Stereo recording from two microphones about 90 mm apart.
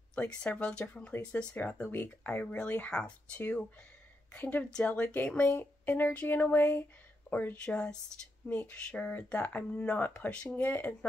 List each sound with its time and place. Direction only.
0.1 s speech: 15° left (ahead or behind)